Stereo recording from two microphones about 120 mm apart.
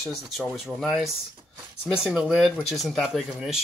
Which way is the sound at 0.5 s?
Centre (ahead or behind).